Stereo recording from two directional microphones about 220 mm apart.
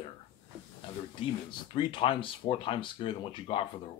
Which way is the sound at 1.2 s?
20° left (ahead or behind).